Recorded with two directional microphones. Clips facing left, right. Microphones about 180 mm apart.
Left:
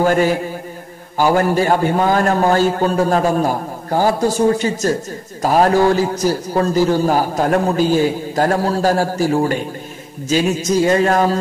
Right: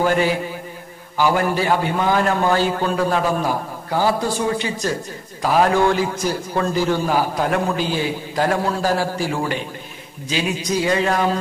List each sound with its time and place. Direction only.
0.0 s a man's voice: 45° left (ahead or behind)